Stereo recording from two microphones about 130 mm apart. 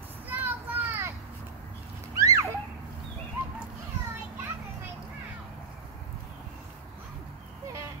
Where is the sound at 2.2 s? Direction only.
25° right (ahead or behind).